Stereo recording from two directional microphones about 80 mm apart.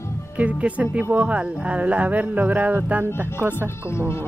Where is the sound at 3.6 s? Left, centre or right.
Left.